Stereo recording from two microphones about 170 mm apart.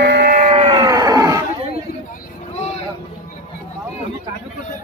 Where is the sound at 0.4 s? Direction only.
35° right (ahead or behind).